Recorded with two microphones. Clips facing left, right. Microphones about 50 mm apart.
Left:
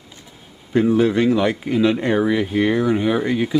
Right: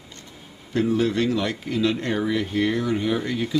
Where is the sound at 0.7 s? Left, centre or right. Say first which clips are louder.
Left 5 dB; centre.